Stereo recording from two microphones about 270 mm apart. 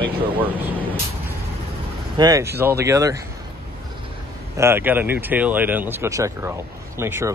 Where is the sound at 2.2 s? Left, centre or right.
Centre.